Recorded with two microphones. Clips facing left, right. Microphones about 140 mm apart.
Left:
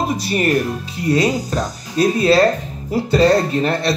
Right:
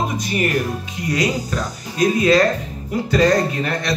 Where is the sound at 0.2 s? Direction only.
35° left (ahead or behind).